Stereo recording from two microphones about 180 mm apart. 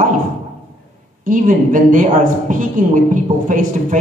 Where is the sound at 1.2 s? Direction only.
45° right (ahead or behind).